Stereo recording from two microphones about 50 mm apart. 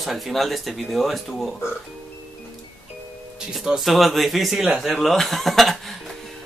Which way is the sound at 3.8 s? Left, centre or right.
Centre.